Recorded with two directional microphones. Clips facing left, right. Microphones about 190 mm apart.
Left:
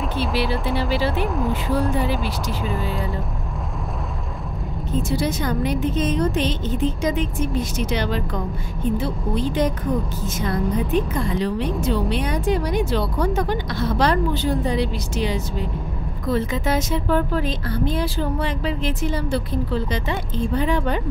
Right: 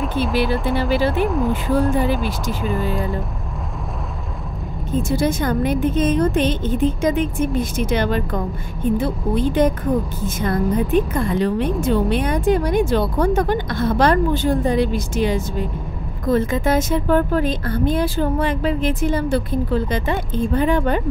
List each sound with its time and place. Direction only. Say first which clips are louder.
0.2 s speech: right 3 dB; centre (ahead or behind)
5.0 s a woman's voice: right 4 dB; 50° right (ahead or behind)